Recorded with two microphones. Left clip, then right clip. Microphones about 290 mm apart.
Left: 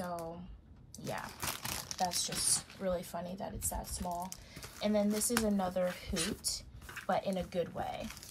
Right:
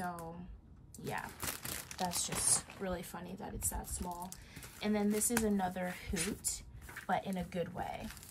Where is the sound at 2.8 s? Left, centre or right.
Centre.